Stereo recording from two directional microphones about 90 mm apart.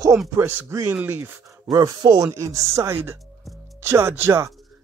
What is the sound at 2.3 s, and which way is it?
Speech, 35° right (ahead or behind).